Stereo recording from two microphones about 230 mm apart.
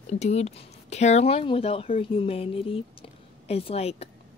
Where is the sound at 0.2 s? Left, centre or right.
Left.